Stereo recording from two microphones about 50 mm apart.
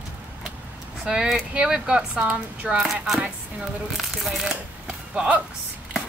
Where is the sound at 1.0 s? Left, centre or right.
Centre.